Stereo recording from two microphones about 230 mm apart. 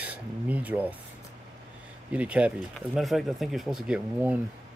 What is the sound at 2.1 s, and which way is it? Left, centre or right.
Speech, centre.